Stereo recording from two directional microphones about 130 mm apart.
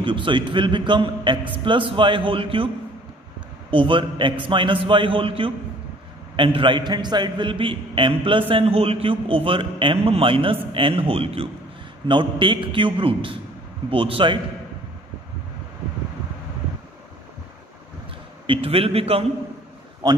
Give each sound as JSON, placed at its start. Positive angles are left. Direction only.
{"t": 0.0, "sound": "a man's voice", "side_deg": -40}
{"t": 3.7, "sound": "a man's voice", "side_deg": -40}
{"t": 18.5, "sound": "a man's voice", "side_deg": -45}
{"t": 20.0, "sound": "a man's voice", "side_deg": -35}